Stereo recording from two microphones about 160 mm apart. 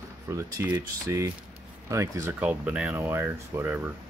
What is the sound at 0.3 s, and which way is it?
Speech, 15° right (ahead or behind).